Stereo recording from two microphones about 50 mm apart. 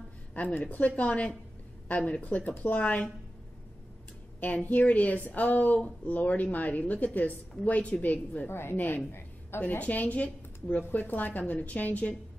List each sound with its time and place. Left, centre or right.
0.3 s a sound: left
0.7 s a woman's voice: left
4.4 s a woman's voice: left
8.5 s a woman's voice: left
8.7 s a woman's voice: left
9.6 s a woman's voice: left